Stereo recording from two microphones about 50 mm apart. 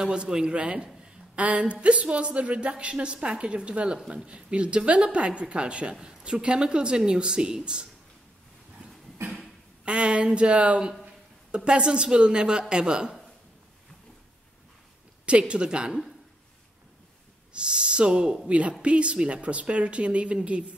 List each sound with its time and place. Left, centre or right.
0.0 s a woman's voice: centre
9.2 s a sound: right
9.8 s a woman's voice: right
15.2 s a woman's voice: right
17.5 s a woman's voice: centre